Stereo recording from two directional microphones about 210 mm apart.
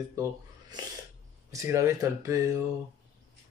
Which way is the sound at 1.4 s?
15° right (ahead or behind).